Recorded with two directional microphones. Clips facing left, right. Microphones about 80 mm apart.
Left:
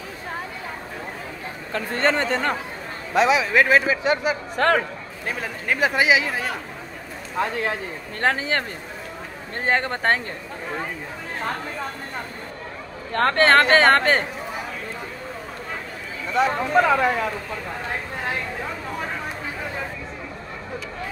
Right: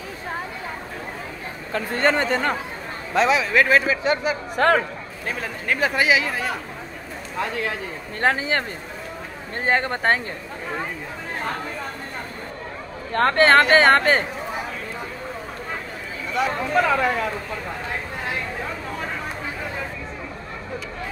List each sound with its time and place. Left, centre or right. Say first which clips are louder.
1.7 s speech: right 1 dB; centre
3.2 s a man's voice: left 1 dB; centre
4.6 s speech: right 2 dB; centre
5.2 s a man's voice: even; centre
7.3 s speech: left 2 dB; left
8.2 s speech: right 1 dB; centre
9.7 s speech: right 1 dB; centre
13.1 s speech: right 1 dB; centre
16.3 s speech: left 2 dB; left
16.8 s a man's voice: left 1 dB; centre